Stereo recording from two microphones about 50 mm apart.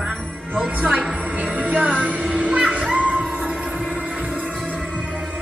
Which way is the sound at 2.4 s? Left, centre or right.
Right.